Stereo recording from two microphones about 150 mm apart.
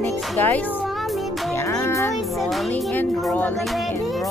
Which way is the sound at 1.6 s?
20° left (ahead or behind).